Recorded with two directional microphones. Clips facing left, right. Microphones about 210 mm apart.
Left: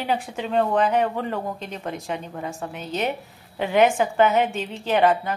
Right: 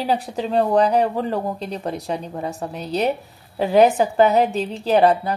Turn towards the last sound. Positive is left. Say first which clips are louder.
# right 4 dB
turn(degrees=-35)  # may be behind; listen again after turning